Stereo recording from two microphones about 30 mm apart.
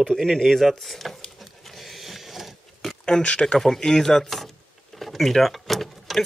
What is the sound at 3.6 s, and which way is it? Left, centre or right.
Speech, centre.